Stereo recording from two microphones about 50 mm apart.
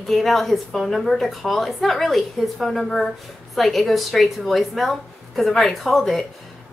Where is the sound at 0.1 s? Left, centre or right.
Centre.